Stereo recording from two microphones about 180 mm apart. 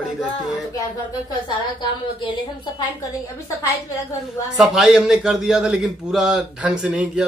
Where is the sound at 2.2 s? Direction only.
25° left (ahead or behind).